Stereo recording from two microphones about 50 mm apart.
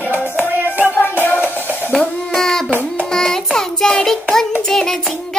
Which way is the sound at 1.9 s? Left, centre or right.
Centre.